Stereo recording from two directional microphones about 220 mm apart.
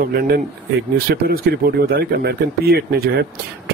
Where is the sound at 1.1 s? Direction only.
45° right (ahead or behind).